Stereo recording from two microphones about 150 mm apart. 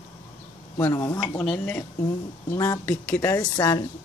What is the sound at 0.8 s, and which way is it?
Speech, 20° left (ahead or behind).